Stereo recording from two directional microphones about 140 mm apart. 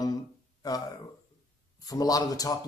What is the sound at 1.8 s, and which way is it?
Speech, 25° left (ahead or behind).